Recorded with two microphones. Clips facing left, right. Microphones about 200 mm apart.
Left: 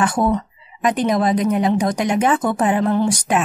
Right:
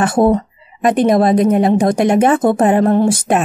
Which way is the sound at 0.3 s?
45° right (ahead or behind).